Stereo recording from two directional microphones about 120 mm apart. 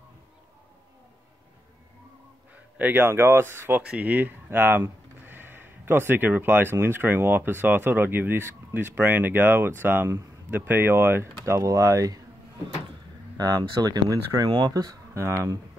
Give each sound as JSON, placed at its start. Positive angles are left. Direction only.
{"t": 2.8, "sound": "speech", "side_deg": -15}
{"t": 13.4, "sound": "speech", "side_deg": -35}